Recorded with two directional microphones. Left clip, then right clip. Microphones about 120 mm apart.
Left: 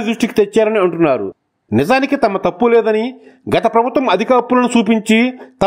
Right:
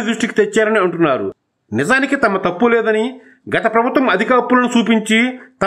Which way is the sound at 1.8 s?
35° left (ahead or behind).